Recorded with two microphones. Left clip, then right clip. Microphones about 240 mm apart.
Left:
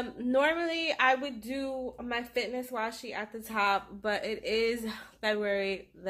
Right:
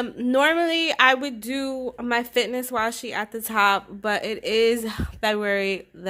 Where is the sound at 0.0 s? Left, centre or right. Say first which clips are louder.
Right 7 dB; right.